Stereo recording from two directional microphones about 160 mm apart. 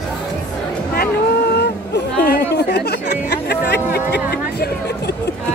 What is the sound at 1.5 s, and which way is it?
Chatter, 90° left.